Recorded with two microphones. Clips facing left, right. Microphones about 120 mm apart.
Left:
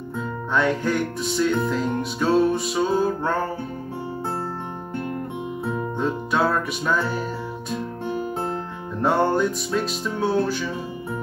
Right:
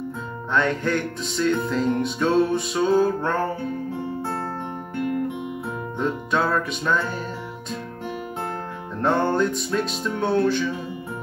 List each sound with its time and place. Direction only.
0.6 s music: 5° left (ahead or behind)
5.9 s music: 5° left (ahead or behind)
9.0 s music: 5° left (ahead or behind)